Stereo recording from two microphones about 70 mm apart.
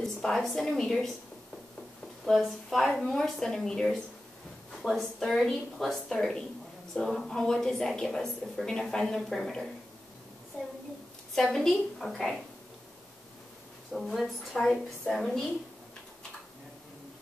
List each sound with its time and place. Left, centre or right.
0.0 s a woman's voice: centre
2.2 s a woman's voice: centre
11.3 s a woman's voice: centre
13.9 s a woman's voice: centre